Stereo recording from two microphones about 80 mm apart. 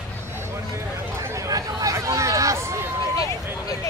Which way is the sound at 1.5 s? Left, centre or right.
Right.